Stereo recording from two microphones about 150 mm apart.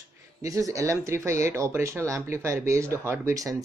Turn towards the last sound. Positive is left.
turn(degrees=-20)  # may be behind; listen again after turning